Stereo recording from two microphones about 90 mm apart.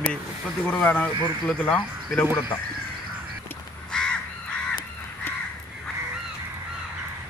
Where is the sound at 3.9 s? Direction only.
10° left (ahead or behind).